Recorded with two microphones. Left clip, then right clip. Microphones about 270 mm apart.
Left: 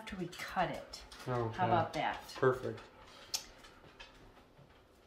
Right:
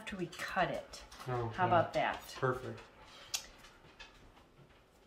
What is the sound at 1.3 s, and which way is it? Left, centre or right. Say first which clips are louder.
Speech: right 1 dB; left.